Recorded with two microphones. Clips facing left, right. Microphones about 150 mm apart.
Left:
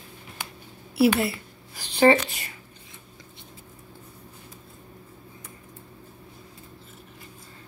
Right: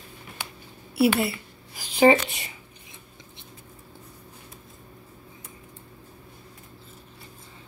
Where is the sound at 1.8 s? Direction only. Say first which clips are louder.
Even; 10° right (ahead or behind).